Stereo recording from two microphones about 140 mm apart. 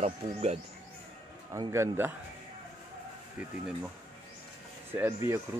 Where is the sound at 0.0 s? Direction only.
50° right (ahead or behind).